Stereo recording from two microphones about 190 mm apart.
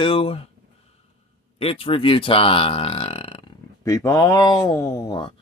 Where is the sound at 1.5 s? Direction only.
30° left (ahead or behind).